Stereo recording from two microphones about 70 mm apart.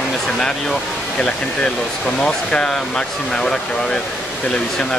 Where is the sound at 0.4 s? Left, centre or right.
Centre.